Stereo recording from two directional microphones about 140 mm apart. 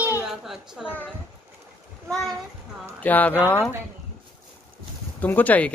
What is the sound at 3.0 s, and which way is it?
Speech, 10° left (ahead or behind).